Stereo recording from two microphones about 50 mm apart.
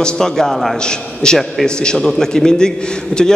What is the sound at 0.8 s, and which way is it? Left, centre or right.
A man's voice, centre.